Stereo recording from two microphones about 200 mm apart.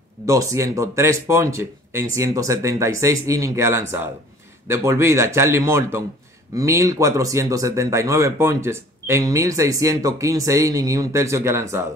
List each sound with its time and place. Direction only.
0.3 s speech: 15° right (ahead or behind)